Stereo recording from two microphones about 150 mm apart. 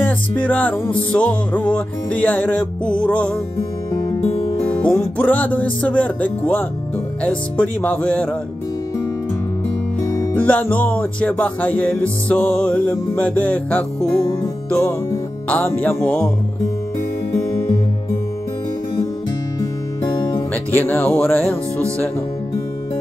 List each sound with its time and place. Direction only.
0.0 s music: 10° left (ahead or behind)
4.6 s music: 10° left (ahead or behind)
10.0 s music: 10° left (ahead or behind)
20.0 s music: 30° left (ahead or behind)
20.7 s music: 10° left (ahead or behind)